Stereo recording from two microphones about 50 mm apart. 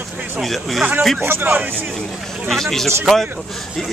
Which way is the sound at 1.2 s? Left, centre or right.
Right.